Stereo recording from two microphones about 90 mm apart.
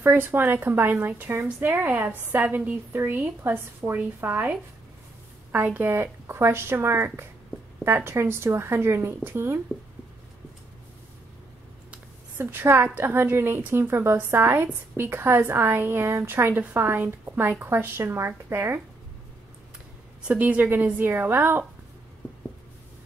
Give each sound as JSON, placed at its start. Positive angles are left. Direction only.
{"t": 0.0, "sound": "a woman's voice", "side_deg": -25}
{"t": 12.4, "sound": "a woman's voice", "side_deg": -25}
{"t": 20.2, "sound": "a woman's voice", "side_deg": -15}